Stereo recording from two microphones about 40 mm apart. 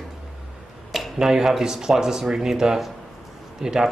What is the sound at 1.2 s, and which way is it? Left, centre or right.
Speech, centre.